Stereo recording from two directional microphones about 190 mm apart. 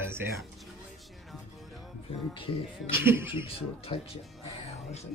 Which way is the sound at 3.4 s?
30° left (ahead or behind).